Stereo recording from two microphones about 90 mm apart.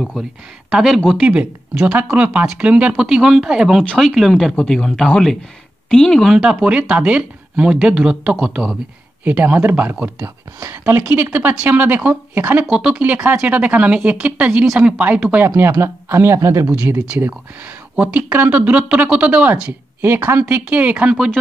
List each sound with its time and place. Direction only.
0.7 s speech: 5° right (ahead or behind)
1.2 s speech: 15° right (ahead or behind); by 6.4 s centre (ahead or behind)
6.4 s speech: 10° right (ahead or behind)
9.2 s speech: 20° right (ahead or behind)
10.2 s speech: 30° right (ahead or behind)
12.6 s speech: 10° right (ahead or behind); by 16.6 s 35° right (ahead or behind)
17.9 s speech: 15° right (ahead or behind)
20.0 s speech: 25° right (ahead or behind)